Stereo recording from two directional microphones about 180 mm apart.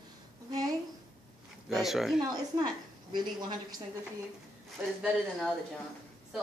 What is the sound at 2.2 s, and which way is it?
A woman's voice, 25° right (ahead or behind).